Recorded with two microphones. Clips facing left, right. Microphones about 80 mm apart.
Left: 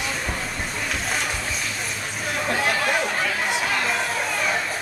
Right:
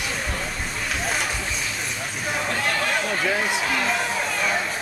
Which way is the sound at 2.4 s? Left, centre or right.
Centre.